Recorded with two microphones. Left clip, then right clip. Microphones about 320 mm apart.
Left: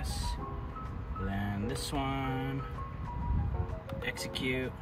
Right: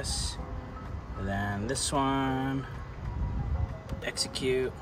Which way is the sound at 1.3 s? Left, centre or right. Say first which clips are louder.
Right 6 dB; centre.